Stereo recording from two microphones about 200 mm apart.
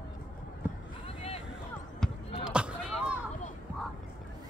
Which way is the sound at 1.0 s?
30° left (ahead or behind).